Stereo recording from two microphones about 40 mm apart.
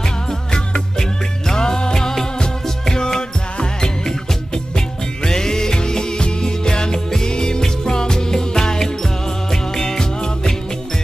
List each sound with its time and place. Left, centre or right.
0.3 s music: centre